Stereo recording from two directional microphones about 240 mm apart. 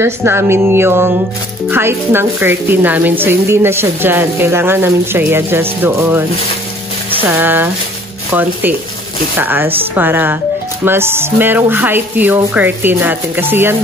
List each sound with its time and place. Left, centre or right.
0.0 s a woman's voice: centre
7.2 s a woman's voice: centre